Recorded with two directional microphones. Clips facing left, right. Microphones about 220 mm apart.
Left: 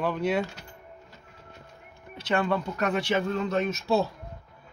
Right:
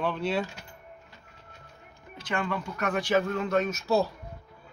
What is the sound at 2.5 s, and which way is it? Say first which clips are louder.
Speech: left 3 dB; 25° left (ahead or behind).